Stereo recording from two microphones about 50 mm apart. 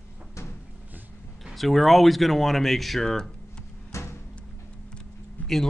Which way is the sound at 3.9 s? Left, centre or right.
Left.